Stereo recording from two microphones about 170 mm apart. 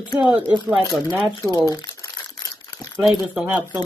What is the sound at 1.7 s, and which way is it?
Crumpling, 25° left (ahead or behind).